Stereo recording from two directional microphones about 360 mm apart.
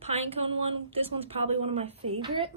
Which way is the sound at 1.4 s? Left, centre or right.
Centre.